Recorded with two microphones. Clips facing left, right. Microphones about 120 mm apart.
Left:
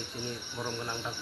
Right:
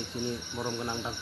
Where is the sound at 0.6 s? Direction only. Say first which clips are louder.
Right 1 dB; 10° right (ahead or behind).